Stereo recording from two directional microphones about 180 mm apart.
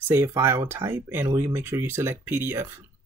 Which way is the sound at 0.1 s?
15° right (ahead or behind).